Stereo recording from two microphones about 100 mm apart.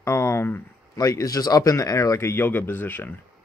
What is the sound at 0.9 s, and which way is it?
Speech, 35° left (ahead or behind).